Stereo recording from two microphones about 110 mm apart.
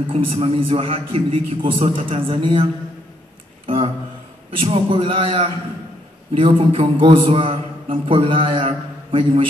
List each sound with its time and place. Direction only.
0.1 s a man's voice: 55° right (ahead or behind)
3.6 s a sound: 55° right (ahead or behind)
4.8 s a man's voice: 50° right (ahead or behind)